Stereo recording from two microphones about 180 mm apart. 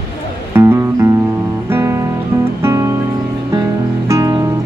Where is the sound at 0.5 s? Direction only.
15° right (ahead or behind).